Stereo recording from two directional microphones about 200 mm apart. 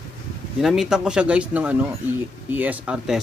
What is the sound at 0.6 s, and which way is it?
Speech, centre (ahead or behind).